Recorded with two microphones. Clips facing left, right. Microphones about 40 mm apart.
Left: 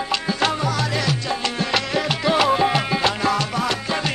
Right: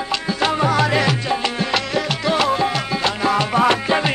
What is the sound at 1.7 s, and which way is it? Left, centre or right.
Music, centre.